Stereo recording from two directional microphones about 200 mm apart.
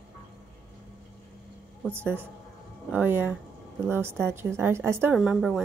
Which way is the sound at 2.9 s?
10° right (ahead or behind).